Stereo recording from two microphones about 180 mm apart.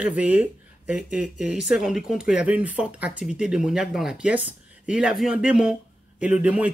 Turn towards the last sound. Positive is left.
turn(degrees=-5)  # may be behind; listen again after turning